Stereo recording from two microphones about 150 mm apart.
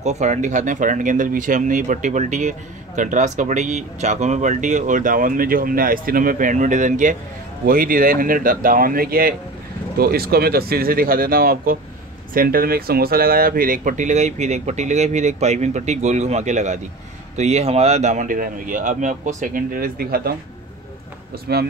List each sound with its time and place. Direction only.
0.0 s speech: 50° right (ahead or behind)
7.6 s speech: 75° right (ahead or behind)
9.9 s speech: 90° right
21.5 s speech: 90° right